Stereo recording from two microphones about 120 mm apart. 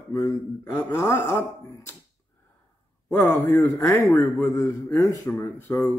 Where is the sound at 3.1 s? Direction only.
20° left (ahead or behind).